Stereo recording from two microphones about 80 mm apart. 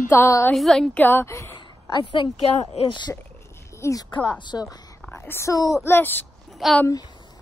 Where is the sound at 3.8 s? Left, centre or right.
Left.